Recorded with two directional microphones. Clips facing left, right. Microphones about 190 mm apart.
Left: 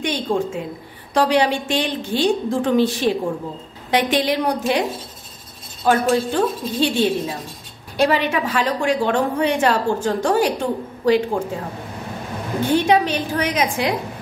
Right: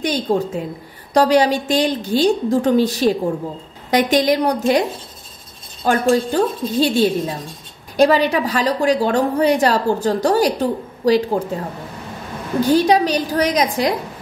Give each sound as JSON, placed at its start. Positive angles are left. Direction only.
{"t": 0.0, "sound": "a woman's voice", "side_deg": -40}
{"t": 5.9, "sound": "a woman's voice", "side_deg": -40}
{"t": 12.6, "sound": "a woman's voice", "side_deg": -35}